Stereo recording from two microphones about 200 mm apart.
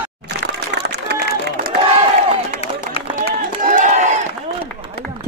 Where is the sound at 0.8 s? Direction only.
55° right (ahead or behind).